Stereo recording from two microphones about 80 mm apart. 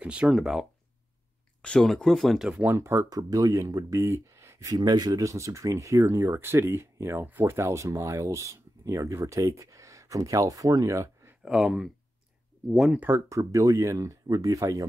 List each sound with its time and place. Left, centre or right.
0.0 s speech: centre
1.6 s speech: centre
2.6 s speech: right
3.1 s speech: right
5.2 s speech: right
11.4 s speech: centre
13.3 s speech: right